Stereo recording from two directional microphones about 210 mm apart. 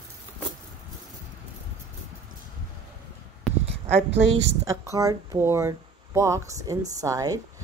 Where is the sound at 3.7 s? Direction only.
30° right (ahead or behind).